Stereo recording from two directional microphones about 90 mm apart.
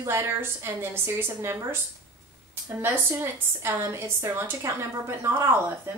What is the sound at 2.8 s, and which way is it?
A woman's voice, 30° right (ahead or behind).